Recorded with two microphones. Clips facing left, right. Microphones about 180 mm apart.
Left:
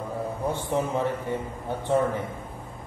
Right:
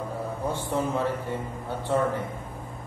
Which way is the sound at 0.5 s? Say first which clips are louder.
Left 1 dB; 15° left (ahead or behind).